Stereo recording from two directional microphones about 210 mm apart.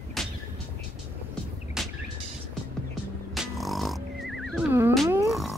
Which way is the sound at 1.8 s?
Centre (ahead or behind).